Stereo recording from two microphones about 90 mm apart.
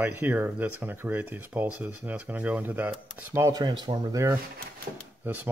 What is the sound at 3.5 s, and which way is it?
Speech, 55° right (ahead or behind).